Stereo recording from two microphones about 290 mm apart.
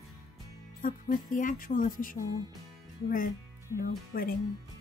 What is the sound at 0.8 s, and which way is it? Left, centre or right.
Speech, left.